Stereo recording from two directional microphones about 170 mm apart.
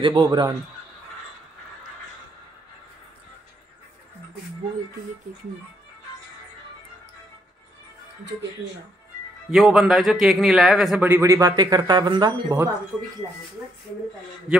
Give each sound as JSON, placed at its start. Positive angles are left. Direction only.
{"t": 0.0, "sound": "speech", "side_deg": -25}
{"t": 9.5, "sound": "a man's voice", "side_deg": 0}